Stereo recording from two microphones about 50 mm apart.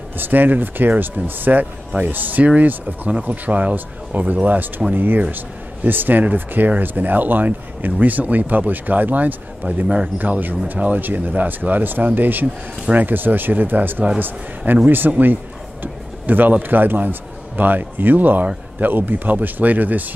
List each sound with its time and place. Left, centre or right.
0.2 s a man's voice: right